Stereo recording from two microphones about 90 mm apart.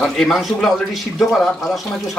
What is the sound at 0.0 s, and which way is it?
Speech, 5° left (ahead or behind).